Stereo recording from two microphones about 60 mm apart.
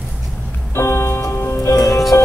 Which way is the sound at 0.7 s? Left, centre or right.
Left.